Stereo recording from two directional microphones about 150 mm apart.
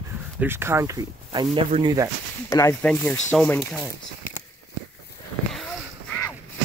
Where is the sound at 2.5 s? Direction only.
25° left (ahead or behind).